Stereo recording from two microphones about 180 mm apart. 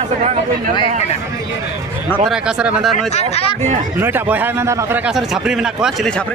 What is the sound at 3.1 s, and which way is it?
Speech, 35° left (ahead or behind).